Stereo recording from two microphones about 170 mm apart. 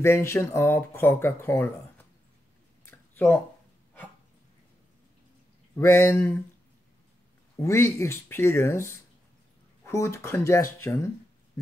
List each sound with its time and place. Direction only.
0.0 s speech: 15° left (ahead or behind)
2.8 s a sound: 10° left (ahead or behind)
5.8 s speech: 15° left (ahead or behind)
7.5 s speech: 15° left (ahead or behind)